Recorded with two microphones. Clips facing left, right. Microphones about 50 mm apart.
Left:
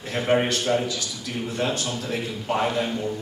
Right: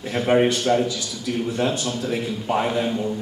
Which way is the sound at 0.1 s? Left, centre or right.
Centre.